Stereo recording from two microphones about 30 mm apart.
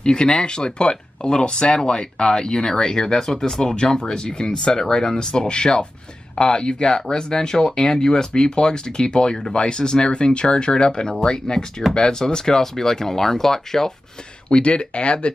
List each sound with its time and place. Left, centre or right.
0.0 s speech: left
14.5 s speech: left